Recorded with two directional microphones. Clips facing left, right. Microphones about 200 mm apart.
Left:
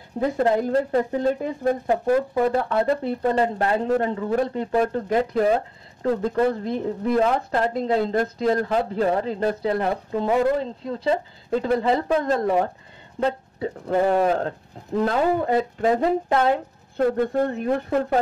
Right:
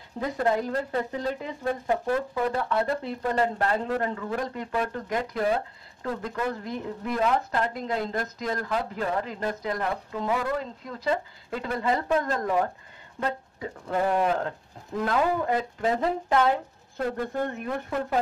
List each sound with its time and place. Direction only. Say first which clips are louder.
0.4 s a woman's voice: left 5 dB; 30° left (ahead or behind)
1.1 s speech: left 8 dB; 45° left (ahead or behind)
2.3 s a woman's voice: left 5 dB; 30° left (ahead or behind)